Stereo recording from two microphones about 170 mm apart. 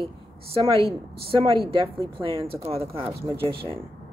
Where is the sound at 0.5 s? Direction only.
30° right (ahead or behind).